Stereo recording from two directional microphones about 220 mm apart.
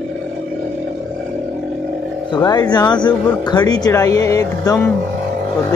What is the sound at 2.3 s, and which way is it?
A man's voice, 20° left (ahead or behind).